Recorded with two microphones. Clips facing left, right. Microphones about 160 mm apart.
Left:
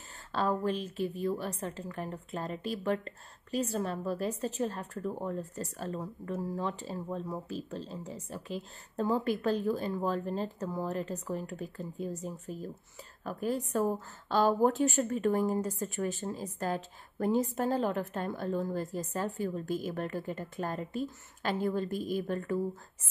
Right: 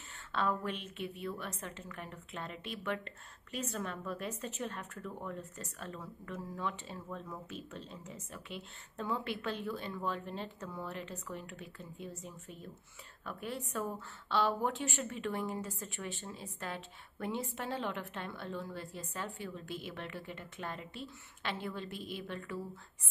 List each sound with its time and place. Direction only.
0.3 s a woman's voice: 35° left (ahead or behind)